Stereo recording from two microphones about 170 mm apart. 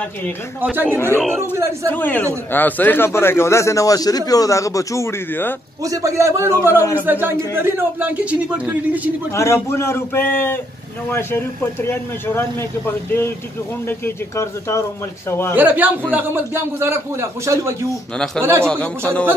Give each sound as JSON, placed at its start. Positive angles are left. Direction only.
{"t": 0.6, "sound": "a man's voice", "side_deg": -10}
{"t": 1.9, "sound": "speech", "side_deg": 10}
{"t": 5.8, "sound": "a man's voice", "side_deg": -20}
{"t": 6.8, "sound": "speech", "side_deg": 15}
{"t": 7.1, "sound": "a man's voice", "side_deg": -10}
{"t": 9.3, "sound": "speech", "side_deg": 15}
{"t": 15.5, "sound": "a man's voice", "side_deg": -10}
{"t": 18.1, "sound": "speech", "side_deg": 5}
{"t": 18.4, "sound": "a man's voice", "side_deg": -15}
{"t": 18.7, "sound": "speech", "side_deg": 5}